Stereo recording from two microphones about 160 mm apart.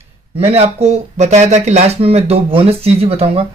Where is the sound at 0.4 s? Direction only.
40° right (ahead or behind).